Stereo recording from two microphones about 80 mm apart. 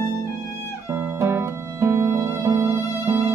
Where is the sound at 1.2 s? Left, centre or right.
Right.